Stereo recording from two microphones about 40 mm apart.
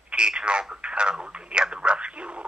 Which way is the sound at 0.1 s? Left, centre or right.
Right.